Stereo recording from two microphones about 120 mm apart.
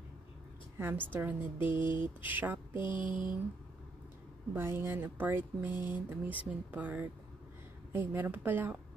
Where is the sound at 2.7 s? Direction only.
40° left (ahead or behind).